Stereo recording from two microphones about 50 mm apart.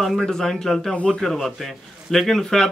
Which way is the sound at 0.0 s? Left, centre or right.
Centre.